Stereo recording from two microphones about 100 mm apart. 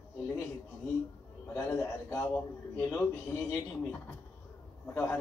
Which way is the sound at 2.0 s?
20° left (ahead or behind).